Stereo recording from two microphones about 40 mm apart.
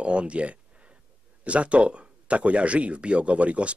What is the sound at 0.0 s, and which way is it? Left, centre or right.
Speech, right.